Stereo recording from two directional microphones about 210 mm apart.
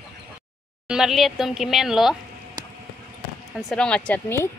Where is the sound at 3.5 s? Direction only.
5° left (ahead or behind).